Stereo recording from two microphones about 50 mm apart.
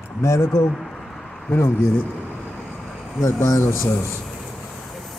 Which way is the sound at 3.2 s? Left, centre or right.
Left.